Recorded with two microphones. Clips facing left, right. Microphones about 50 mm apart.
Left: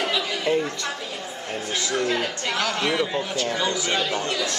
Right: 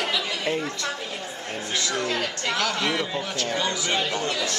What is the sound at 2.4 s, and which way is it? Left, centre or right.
Speech, centre.